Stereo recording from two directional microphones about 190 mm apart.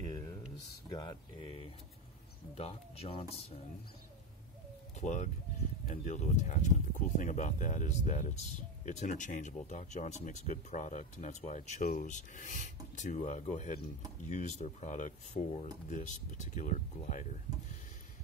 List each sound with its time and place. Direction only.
0.8 s speech: 20° left (ahead or behind)
5.0 s speech: 40° left (ahead or behind)